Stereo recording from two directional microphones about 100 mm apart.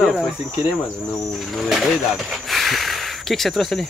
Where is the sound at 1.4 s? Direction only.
Centre (ahead or behind).